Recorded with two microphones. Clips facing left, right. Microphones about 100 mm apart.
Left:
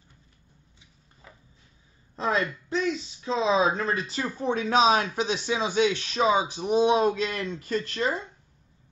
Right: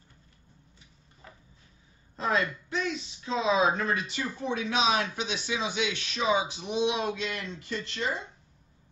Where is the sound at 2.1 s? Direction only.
30° left (ahead or behind).